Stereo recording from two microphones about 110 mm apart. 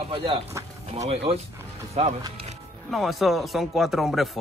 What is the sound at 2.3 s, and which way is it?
Music, 70° right (ahead or behind).